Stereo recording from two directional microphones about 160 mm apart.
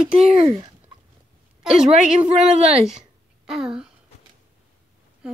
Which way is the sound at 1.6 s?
5° right (ahead or behind).